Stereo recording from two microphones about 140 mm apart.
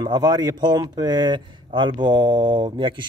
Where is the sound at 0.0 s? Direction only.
30° right (ahead or behind).